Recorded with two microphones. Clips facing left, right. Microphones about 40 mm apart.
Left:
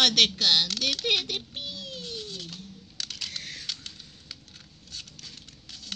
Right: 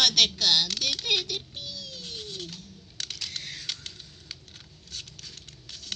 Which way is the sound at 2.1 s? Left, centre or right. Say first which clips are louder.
Even; right.